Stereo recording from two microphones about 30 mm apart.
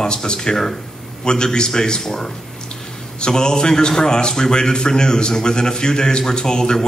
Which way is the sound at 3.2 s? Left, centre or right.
Left.